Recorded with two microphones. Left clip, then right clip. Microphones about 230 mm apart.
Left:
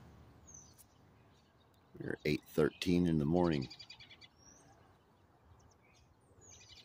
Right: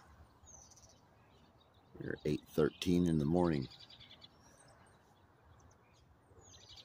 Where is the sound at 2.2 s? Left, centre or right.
Centre.